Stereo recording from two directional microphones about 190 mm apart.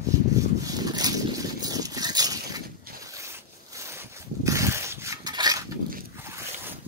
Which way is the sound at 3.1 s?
15° right (ahead or behind).